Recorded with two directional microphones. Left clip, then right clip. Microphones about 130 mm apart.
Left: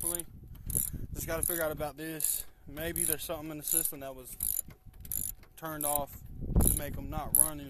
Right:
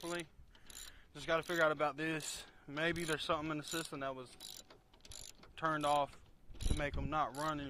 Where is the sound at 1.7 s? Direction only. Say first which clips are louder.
Right 1 dB; 30° left (ahead or behind).